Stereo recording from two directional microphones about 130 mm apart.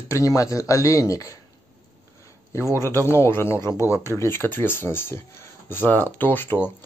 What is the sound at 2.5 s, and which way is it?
Speech, 20° left (ahead or behind).